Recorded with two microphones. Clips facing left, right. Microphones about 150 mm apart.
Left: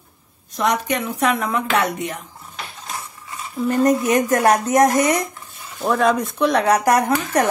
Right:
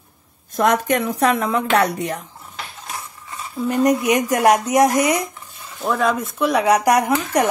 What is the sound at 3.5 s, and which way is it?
Speech, 15° right (ahead or behind).